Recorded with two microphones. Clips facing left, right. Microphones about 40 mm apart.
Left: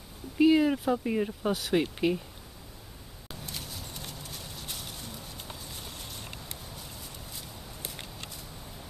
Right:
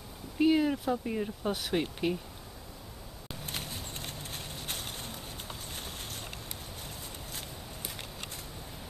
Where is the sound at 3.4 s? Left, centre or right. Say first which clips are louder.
Right 2 dB; right.